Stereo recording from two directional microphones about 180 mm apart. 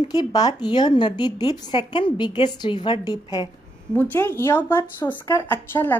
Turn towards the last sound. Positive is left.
turn(degrees=10)  # may be behind; listen again after turning